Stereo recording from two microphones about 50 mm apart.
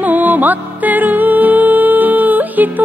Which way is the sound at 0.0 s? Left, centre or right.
Right.